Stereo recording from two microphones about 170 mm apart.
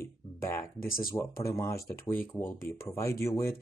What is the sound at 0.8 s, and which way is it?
Speech, 55° left (ahead or behind).